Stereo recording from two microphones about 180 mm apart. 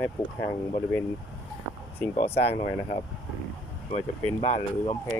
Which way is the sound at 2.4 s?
40° left (ahead or behind).